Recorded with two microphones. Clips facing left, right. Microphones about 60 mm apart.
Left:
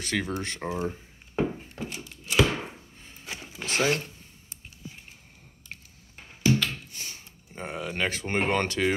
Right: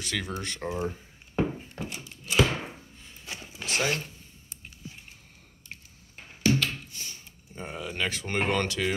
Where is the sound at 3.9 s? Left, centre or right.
Left.